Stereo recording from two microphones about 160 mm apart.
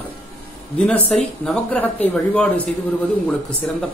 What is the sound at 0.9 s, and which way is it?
Speech, 5° left (ahead or behind).